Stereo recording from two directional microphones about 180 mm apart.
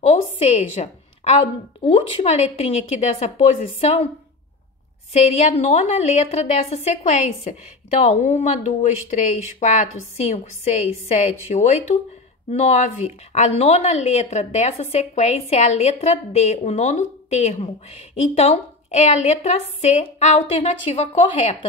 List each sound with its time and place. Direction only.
0.4 s a woman's voice: 35° left (ahead or behind)
5.1 s a woman's voice: 35° left (ahead or behind)